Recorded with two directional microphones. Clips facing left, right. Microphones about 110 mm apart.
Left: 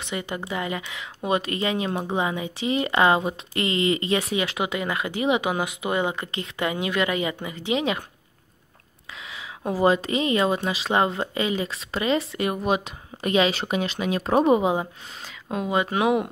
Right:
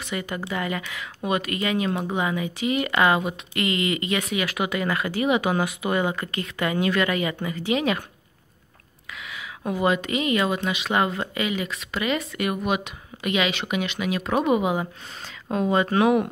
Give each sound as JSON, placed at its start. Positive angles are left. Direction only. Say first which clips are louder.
{"t": 0.0, "sound": "a woman's voice", "louder": "even", "side_deg": 25}
{"t": 9.7, "sound": "a woman's voice", "louder": "left 2 dB", "side_deg": 30}
{"t": 15.4, "sound": "speech", "louder": "right 2 dB", "side_deg": 5}